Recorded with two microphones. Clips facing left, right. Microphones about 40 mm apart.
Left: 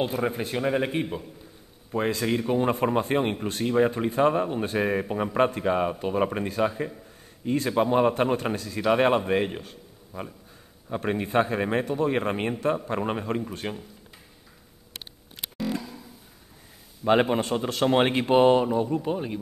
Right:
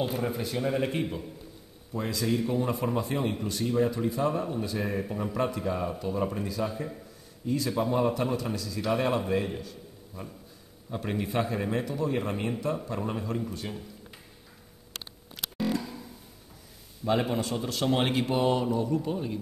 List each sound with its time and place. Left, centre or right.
0.0 s speech: left
1.9 s a man's voice: left
15.8 s music: centre
17.0 s speech: left